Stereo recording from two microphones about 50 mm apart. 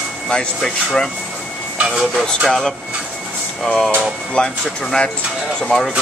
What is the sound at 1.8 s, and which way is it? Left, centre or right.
Speech, centre.